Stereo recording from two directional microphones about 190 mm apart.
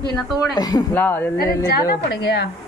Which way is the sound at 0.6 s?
20° left (ahead or behind).